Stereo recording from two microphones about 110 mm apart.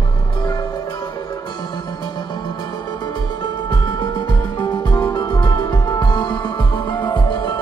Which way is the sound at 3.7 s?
40° left (ahead or behind).